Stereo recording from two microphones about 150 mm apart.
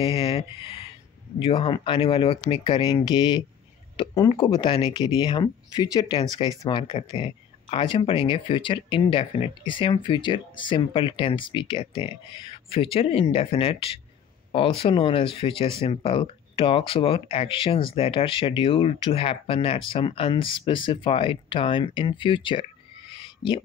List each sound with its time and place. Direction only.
0.0 s speech: 40° left (ahead or behind)